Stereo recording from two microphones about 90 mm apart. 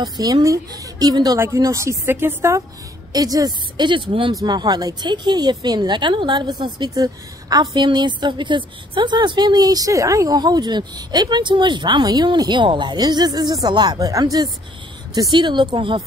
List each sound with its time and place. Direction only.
0.0 s a woman's voice: 45° right (ahead or behind)
1.4 s speech: 35° right (ahead or behind)
3.1 s a woman's voice: 45° right (ahead or behind); by 4.3 s 70° right (ahead or behind)
4.3 s speech: 50° right (ahead or behind)
6.9 s a woman's voice: 45° right (ahead or behind); by 16.0 s 70° right (ahead or behind)